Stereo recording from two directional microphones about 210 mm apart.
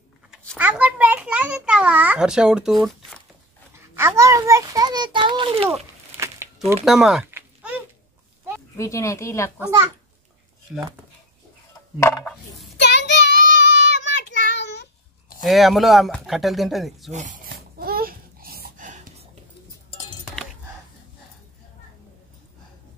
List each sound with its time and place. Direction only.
0.3 s a child's voice: 5° right (ahead or behind)
3.7 s a child's voice: 10° right (ahead or behind)
6.1 s a sound: 10° right (ahead or behind)
8.7 s speech: 15° left (ahead or behind)
9.6 s a child's voice: 15° right (ahead or behind)
12.0 s coin: 5° left (ahead or behind)
12.8 s child singing: 55° left (ahead or behind)
13.3 s child singing: 40° right (ahead or behind)
13.9 s child singing: 55° left (ahead or behind)
15.4 s speech: centre (ahead or behind)
17.1 s speech: 35° right (ahead or behind)
17.5 s babbling: 45° right (ahead or behind)